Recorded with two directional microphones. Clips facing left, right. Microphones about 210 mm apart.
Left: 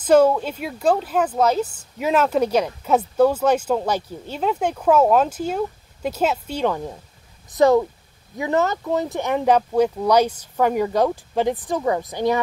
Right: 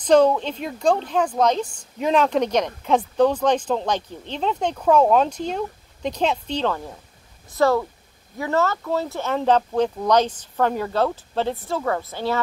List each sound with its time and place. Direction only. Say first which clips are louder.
0.0 s speech: left 1 dB; 5° left (ahead or behind)